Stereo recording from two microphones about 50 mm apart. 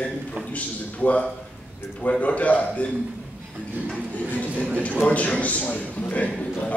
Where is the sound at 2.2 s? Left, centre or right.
Left.